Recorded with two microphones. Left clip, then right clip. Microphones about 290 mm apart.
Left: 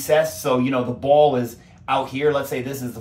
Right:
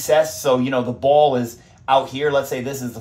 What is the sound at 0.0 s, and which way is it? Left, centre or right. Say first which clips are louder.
Speech: right 2 dB; right.